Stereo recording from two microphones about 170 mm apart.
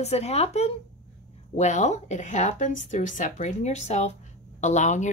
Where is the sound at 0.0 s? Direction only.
40° left (ahead or behind).